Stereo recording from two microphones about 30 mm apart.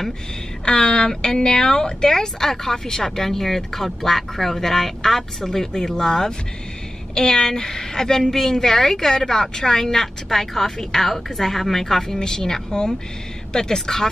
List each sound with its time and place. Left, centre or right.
0.7 s a woman's voice: left